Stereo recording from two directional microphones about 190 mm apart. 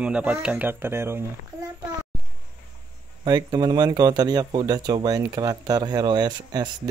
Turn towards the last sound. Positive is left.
turn(degrees=-20)  # may be behind; listen again after turning